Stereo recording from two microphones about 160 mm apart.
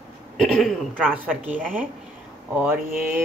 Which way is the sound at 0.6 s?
5° left (ahead or behind).